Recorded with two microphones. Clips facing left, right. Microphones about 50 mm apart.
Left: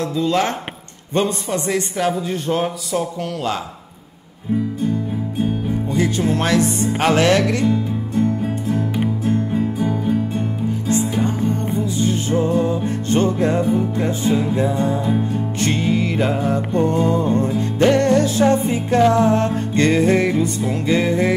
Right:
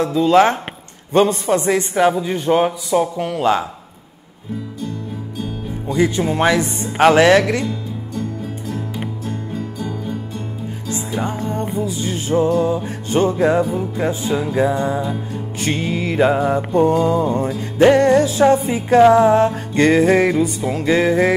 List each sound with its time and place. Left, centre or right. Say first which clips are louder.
0.0 s a man's voice: right 6 dB; right
2.5 s a man's voice: right 6 dB; right
2.9 s music: right 4 dB; centre
5.9 s music: right 3 dB; centre
7.6 s music: left 6 dB; left
11.0 s music: left 3 dB; centre
14.5 s a man's voice: right 2 dB; right
15.6 s music: left 1 dB; centre